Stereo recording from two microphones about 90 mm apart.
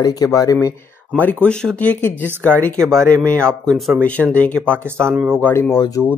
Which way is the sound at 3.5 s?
10° left (ahead or behind).